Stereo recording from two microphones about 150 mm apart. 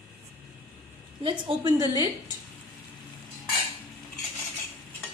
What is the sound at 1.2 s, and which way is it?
Speech, 30° right (ahead or behind).